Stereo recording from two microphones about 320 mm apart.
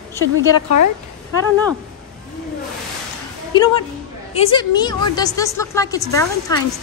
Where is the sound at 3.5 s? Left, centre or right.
Centre.